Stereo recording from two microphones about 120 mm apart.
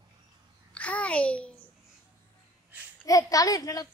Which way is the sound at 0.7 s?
10° left (ahead or behind).